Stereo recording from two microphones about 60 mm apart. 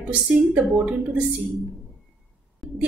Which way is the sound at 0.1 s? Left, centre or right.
Right.